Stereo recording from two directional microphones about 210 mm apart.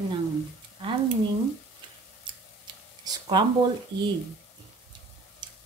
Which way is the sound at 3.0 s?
20° right (ahead or behind).